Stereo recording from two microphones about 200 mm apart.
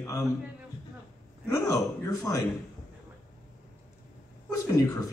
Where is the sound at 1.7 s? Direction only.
15° left (ahead or behind).